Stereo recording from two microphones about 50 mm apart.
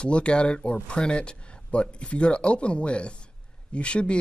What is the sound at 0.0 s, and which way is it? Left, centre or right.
Speech, left.